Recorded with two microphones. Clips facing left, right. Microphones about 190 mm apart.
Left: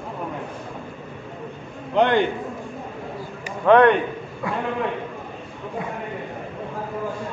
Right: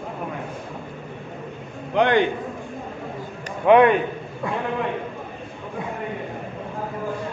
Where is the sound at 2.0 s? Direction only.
15° right (ahead or behind).